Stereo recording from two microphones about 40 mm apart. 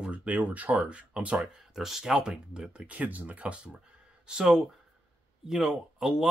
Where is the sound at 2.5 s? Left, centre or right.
Right.